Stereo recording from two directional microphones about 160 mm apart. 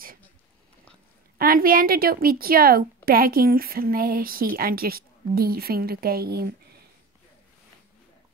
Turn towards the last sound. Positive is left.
turn(degrees=-75)  # may be behind; listen again after turning